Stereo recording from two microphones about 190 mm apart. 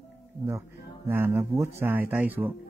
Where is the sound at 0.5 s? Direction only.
10° right (ahead or behind).